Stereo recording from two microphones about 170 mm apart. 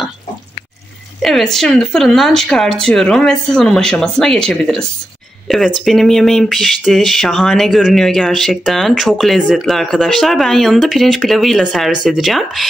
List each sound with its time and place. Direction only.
1.2 s speech: centre (ahead or behind)